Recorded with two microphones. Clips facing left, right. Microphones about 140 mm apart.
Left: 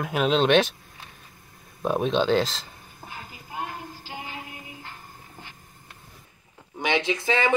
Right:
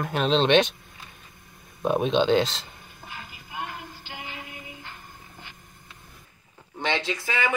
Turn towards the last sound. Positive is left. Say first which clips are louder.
# left 4 dB
turn(degrees=25)  # may be behind; listen again after turning